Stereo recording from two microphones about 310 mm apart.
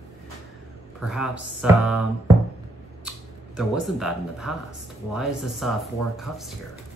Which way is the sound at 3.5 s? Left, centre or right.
Centre.